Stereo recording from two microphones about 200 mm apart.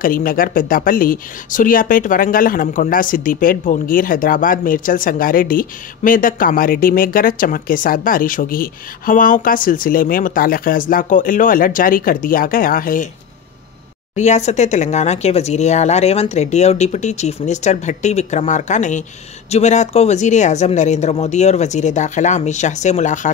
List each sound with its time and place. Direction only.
0.0 s speech: 45° left (ahead or behind)
14.1 s speech: 35° left (ahead or behind)